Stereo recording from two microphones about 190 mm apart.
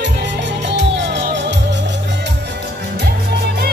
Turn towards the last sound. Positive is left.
turn(degrees=-55)  # may be behind; listen again after turning